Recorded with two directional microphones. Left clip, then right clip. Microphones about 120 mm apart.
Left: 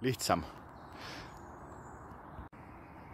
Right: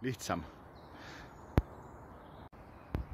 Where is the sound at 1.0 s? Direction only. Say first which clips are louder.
Left 4 dB; 20° left (ahead or behind).